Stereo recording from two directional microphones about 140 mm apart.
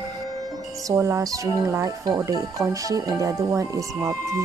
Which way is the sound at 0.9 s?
20° right (ahead or behind).